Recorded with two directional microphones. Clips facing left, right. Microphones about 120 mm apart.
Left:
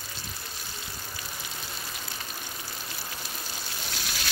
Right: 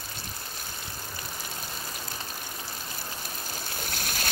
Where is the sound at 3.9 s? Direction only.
50° right (ahead or behind).